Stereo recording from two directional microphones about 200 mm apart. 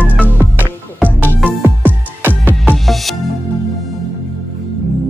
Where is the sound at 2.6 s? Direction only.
Centre (ahead or behind).